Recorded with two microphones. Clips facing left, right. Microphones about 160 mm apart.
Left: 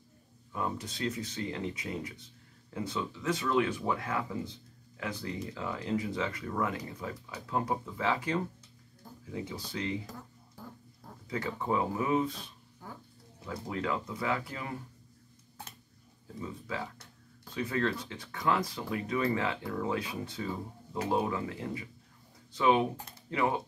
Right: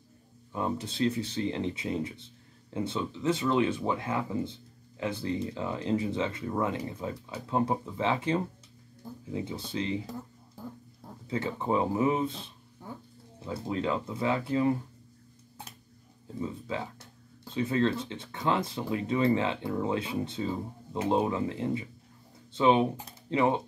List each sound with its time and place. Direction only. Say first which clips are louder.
0.5 s speech: right 4 dB; 25° right (ahead or behind)
11.2 s speech: right 3 dB; 25° right (ahead or behind)
16.3 s speech: right 4 dB; 25° right (ahead or behind)